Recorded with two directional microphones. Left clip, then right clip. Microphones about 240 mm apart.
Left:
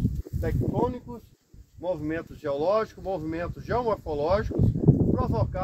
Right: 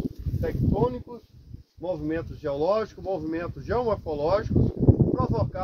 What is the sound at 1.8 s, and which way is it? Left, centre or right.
Speech, left.